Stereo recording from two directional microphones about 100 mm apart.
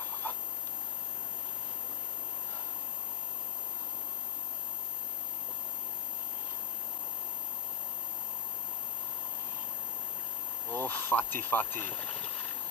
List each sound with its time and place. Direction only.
10.7 s speech: 20° left (ahead or behind)